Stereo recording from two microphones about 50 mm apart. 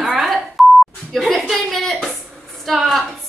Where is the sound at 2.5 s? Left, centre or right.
Centre.